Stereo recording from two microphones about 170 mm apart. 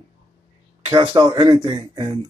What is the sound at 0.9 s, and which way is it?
Speech, 30° right (ahead or behind).